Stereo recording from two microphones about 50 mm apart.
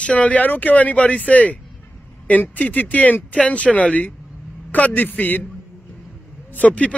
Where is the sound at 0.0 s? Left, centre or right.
Left.